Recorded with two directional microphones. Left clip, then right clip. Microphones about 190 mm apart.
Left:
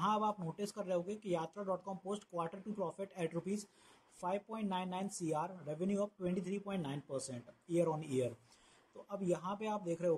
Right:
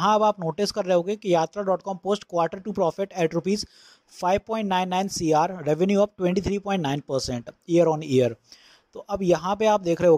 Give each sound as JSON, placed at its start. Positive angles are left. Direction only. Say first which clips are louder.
{"t": 0.0, "sound": "speech", "louder": "right 16 dB", "side_deg": -40}